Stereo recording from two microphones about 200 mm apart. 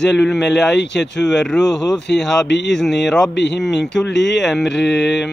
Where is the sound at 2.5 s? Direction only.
60° left (ahead or behind).